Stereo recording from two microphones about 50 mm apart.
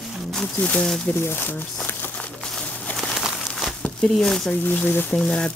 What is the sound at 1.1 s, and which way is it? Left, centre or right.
Speech, left.